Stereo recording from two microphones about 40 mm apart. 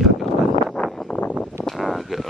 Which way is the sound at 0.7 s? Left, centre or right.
Centre.